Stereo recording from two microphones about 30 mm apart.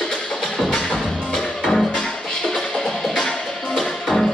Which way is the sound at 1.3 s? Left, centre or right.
Centre.